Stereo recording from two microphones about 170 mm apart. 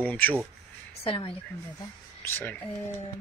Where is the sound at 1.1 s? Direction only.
30° left (ahead or behind).